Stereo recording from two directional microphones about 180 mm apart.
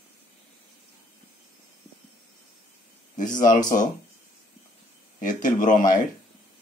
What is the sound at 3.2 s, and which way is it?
Speech, 45° left (ahead or behind).